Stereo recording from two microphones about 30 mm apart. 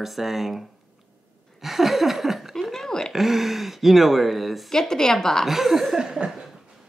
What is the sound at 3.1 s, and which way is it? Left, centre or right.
Speech, centre.